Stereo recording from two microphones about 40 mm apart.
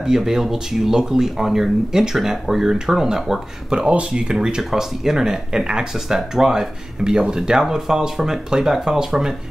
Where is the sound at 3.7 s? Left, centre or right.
Right.